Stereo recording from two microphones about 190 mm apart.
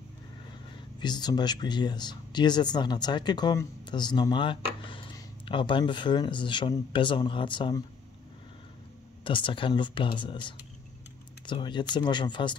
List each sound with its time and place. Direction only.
1.0 s speech: 20° left (ahead or behind)
9.2 s speech: 25° left (ahead or behind)